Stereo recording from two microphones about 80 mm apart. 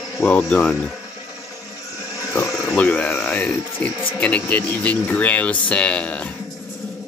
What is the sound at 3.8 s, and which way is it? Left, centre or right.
Speech, centre.